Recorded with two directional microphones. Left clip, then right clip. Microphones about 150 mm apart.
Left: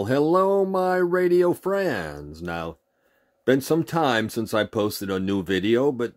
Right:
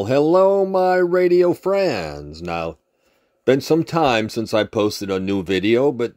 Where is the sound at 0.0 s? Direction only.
10° right (ahead or behind).